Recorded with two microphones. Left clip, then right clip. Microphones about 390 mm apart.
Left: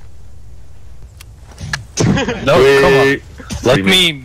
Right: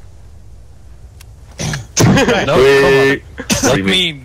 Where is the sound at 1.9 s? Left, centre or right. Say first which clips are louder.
Right 5 dB; centre.